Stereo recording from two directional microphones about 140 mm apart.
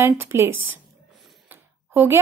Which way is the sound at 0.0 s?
20° right (ahead or behind).